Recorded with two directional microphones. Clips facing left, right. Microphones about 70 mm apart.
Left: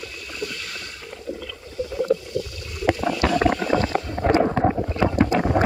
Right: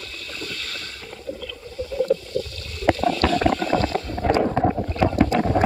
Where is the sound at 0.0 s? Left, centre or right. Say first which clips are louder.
Left 3 dB; centre.